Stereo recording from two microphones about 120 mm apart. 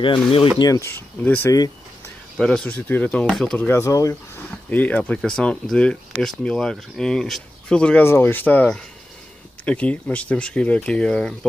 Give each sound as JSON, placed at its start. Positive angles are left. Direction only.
{"t": 0.0, "sound": "speech", "side_deg": 45}
{"t": 0.6, "sound": "speech", "side_deg": 25}
{"t": 1.2, "sound": "speech", "side_deg": 15}
{"t": 3.6, "sound": "speech", "side_deg": 20}